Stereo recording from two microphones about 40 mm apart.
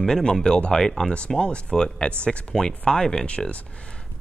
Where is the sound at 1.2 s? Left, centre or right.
Left.